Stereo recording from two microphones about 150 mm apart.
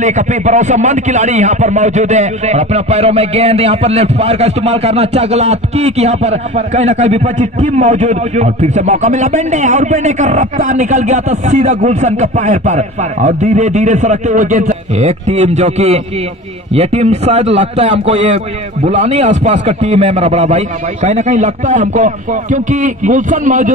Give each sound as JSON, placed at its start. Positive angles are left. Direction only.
{"t": 0.0, "sound": "a man's voice", "side_deg": -50}